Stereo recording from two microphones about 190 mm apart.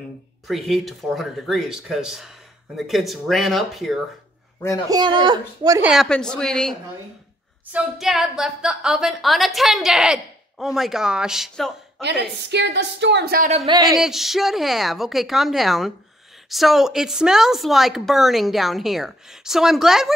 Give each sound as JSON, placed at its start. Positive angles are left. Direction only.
{"t": 0.5, "sound": "a woman's voice", "side_deg": 0}
{"t": 4.8, "sound": "speech", "side_deg": -20}
{"t": 5.8, "sound": "a woman's voice", "side_deg": 0}
{"t": 12.0, "sound": "a woman's voice", "side_deg": -65}
{"t": 13.7, "sound": "speech", "side_deg": -20}
{"t": 13.9, "sound": "a woman's voice", "side_deg": 0}